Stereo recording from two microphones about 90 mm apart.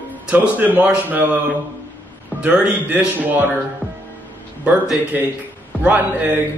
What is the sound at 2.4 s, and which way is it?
Speech, 20° right (ahead or behind).